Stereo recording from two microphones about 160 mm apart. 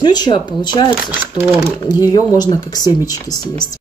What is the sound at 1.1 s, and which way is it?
Speech, 15° right (ahead or behind).